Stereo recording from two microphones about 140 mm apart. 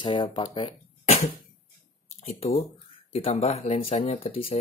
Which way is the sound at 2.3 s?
50° left (ahead or behind).